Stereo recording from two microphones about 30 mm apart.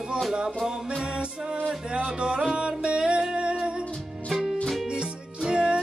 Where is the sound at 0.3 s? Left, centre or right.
Right.